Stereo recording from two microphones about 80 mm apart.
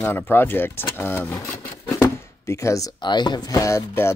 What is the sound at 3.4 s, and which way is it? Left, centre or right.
Speech, left.